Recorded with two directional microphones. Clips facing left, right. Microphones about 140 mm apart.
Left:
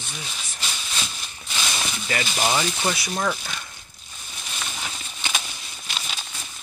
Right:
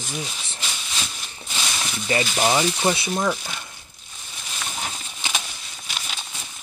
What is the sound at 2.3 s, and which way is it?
Speech, 15° right (ahead or behind).